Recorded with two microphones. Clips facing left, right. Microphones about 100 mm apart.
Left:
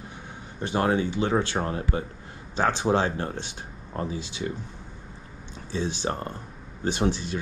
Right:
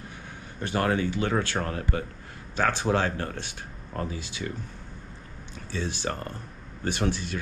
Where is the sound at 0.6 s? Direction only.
25° left (ahead or behind).